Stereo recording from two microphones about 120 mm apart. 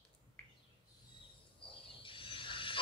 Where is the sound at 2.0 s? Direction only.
45° left (ahead or behind).